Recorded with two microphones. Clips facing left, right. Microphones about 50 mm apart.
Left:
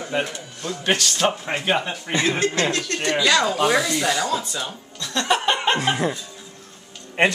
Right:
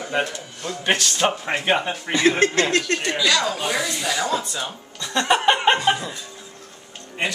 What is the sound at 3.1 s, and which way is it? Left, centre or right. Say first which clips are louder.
Speech: left 4 dB; centre.